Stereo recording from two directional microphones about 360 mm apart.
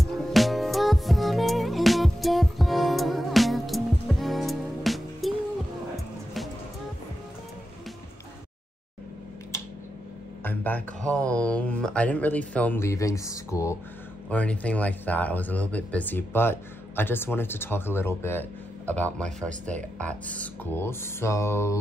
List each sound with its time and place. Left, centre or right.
0.0 s music: centre
10.4 s a sound: centre
11.1 s speech: centre
20.3 s speech: centre